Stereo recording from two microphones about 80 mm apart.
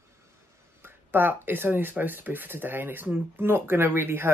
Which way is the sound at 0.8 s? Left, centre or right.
Right.